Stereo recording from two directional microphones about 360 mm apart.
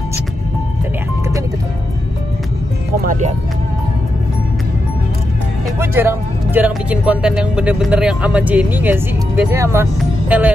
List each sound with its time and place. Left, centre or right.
3.0 s music: right
5.8 s speech: centre